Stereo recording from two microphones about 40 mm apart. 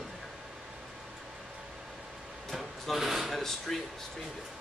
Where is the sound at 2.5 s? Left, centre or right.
Centre.